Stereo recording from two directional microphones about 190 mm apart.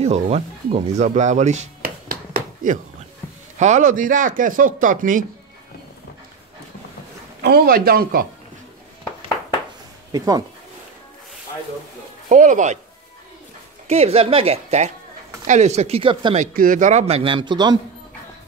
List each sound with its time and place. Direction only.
0.0 s speech: 35° right (ahead or behind)
7.4 s speech: 55° right (ahead or behind)
10.1 s speech: 20° right (ahead or behind)
12.3 s speech: 40° right (ahead or behind)
13.8 s speech: 35° right (ahead or behind)
16.3 s speech: 45° right (ahead or behind); by 17.7 s 25° right (ahead or behind)